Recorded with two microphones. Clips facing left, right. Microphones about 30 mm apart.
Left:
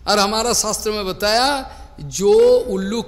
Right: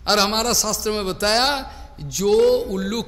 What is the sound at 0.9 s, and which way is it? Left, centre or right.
Speech, centre.